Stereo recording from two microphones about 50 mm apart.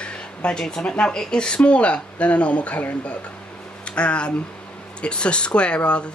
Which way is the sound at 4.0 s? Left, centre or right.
Left.